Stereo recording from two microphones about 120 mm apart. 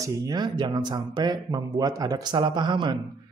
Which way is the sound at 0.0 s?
35° right (ahead or behind).